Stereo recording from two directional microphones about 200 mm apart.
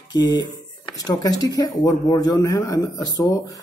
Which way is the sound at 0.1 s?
20° left (ahead or behind).